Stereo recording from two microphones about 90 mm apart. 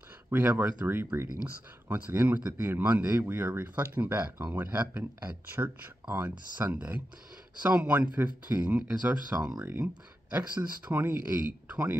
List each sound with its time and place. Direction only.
0.3 s speech: 20° right (ahead or behind)
0.8 s speech: 25° right (ahead or behind); by 9.5 s 10° right (ahead or behind)
9.8 s speech: 50° right (ahead or behind)
10.3 s speech: 20° right (ahead or behind)